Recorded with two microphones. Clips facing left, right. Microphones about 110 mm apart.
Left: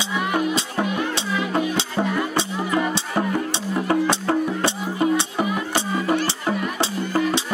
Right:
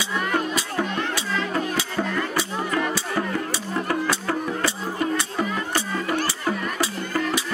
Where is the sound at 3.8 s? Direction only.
25° left (ahead or behind).